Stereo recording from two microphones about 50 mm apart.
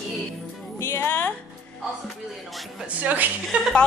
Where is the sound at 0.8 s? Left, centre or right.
Left.